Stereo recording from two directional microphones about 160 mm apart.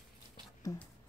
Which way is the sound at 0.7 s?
20° left (ahead or behind).